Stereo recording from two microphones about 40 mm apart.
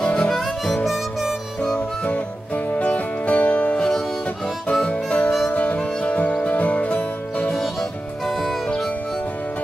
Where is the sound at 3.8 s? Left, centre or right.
Centre.